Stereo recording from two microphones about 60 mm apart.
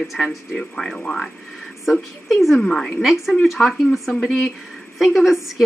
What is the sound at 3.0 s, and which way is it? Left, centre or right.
Speech, centre.